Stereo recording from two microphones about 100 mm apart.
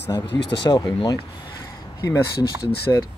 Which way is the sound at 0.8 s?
40° left (ahead or behind).